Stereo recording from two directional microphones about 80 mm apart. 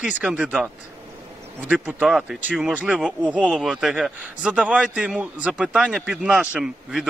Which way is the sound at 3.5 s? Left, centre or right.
Centre.